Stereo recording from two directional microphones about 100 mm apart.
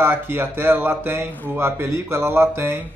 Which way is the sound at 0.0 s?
20° right (ahead or behind).